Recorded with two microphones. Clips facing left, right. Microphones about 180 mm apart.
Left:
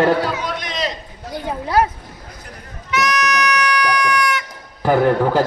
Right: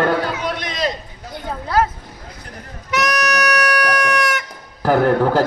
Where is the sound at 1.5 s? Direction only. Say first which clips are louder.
Left 1 dB; 15° left (ahead or behind).